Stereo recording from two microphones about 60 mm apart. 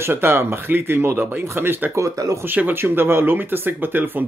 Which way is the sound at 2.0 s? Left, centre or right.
Right.